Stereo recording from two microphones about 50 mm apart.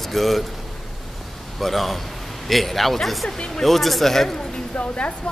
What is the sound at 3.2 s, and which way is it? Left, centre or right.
Speech, centre.